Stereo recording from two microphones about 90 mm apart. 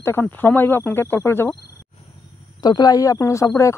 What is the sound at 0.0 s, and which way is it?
Speech, 25° left (ahead or behind).